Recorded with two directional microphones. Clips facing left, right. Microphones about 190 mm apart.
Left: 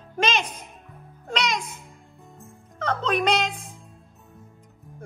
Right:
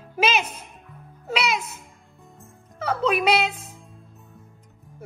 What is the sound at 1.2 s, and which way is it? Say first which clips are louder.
Music: right 2 dB; 5° right (ahead or behind).